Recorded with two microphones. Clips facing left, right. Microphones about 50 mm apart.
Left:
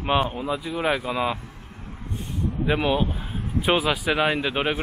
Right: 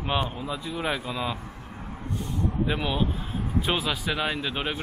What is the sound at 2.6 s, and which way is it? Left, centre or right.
A man's voice, centre.